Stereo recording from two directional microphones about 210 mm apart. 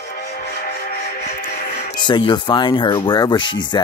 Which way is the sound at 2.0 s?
20° left (ahead or behind).